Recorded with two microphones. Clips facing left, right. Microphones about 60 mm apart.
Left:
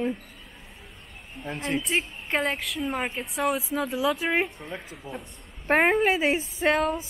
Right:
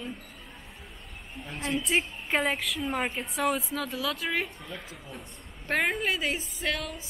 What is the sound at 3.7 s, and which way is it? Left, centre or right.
Speech, centre.